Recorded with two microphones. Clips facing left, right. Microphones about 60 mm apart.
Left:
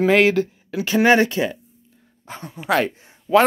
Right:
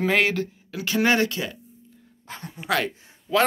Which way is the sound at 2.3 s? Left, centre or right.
Centre.